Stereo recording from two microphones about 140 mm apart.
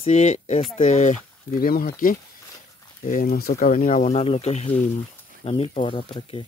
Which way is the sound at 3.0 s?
80° left.